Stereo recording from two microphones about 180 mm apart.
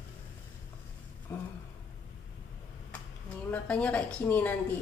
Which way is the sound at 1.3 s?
15° left (ahead or behind).